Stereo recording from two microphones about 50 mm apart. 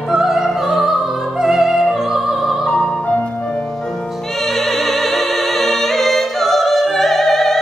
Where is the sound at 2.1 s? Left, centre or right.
Centre.